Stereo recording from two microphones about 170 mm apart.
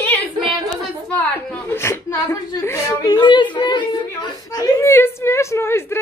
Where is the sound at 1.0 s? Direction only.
10° left (ahead or behind); by 3.4 s 25° left (ahead or behind).